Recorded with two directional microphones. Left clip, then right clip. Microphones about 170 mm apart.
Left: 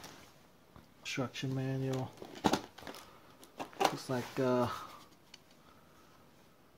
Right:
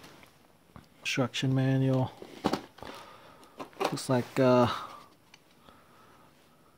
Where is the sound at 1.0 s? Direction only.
55° right (ahead or behind); by 2.1 s 90° right.